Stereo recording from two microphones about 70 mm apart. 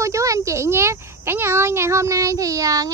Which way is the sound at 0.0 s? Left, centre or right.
Right.